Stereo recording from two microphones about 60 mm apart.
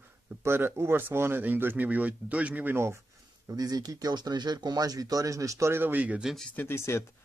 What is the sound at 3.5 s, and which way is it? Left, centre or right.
Speech, right.